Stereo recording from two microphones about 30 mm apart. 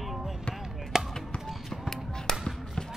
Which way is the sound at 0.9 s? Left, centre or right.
Right.